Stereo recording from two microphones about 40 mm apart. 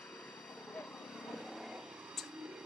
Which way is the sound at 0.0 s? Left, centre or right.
Left.